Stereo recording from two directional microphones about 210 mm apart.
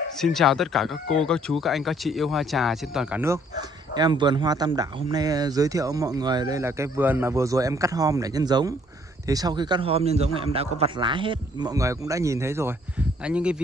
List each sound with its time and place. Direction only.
0.2 s speech: centre (ahead or behind)
3.9 s a man's voice: 20° right (ahead or behind); by 13.6 s 5° right (ahead or behind)